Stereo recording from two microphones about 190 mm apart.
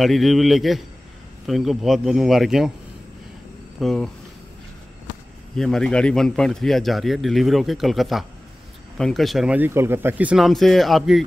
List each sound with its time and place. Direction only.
0.0 s speech: centre (ahead or behind)
3.8 s speech: 5° left (ahead or behind)
5.6 s speech: 5° left (ahead or behind)